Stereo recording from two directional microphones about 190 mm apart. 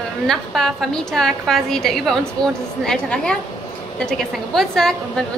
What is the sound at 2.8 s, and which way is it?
A woman's voice, 5° left (ahead or behind).